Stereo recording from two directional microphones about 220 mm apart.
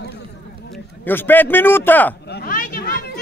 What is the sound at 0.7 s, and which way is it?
A man's voice, 10° left (ahead or behind).